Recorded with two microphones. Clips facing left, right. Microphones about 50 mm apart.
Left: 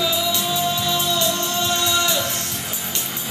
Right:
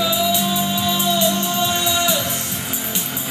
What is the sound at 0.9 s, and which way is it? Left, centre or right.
Music, centre.